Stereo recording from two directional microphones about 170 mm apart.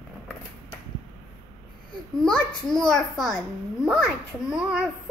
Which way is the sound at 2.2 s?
5° left (ahead or behind).